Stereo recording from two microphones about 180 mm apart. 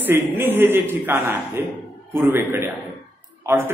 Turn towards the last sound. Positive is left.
turn(degrees=-15)  # may be behind; listen again after turning